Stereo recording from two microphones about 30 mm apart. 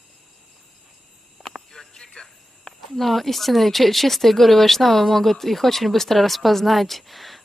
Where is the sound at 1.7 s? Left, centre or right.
Centre.